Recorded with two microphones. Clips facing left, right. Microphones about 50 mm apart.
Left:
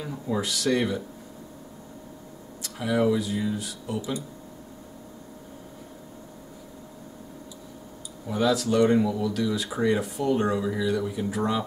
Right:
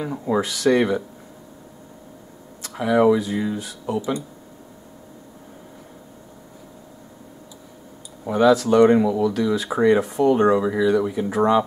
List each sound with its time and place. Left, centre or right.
0.0 s speech: right
2.8 s speech: right
8.3 s speech: right